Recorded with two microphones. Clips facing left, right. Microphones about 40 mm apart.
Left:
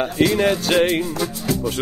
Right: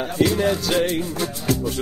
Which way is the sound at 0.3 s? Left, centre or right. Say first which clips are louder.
Left 3 dB; left.